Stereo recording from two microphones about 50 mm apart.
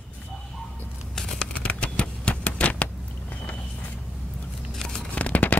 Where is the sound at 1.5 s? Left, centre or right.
Left.